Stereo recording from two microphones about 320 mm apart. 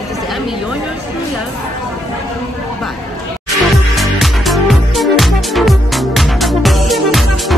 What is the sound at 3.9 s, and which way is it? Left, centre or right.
Music, centre.